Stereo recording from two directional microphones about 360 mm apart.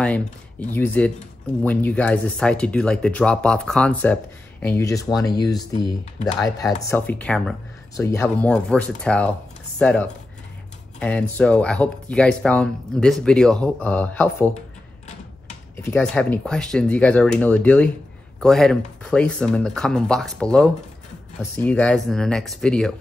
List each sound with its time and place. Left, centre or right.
0.0 s speech: centre
15.8 s speech: centre